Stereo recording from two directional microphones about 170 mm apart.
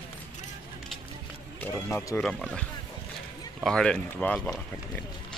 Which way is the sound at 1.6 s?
15° left (ahead or behind).